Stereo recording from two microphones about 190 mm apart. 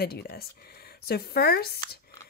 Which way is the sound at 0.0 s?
55° left (ahead or behind).